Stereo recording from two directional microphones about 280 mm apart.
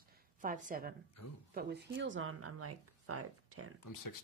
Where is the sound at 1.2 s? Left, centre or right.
Left.